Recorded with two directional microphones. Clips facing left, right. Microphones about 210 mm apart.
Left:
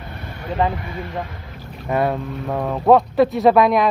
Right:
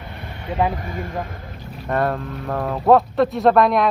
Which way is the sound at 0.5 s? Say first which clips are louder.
Even; 5° right (ahead or behind).